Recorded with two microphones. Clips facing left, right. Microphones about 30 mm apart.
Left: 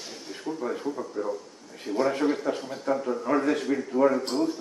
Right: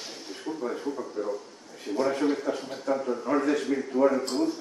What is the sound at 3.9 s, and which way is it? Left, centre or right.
Speech, centre.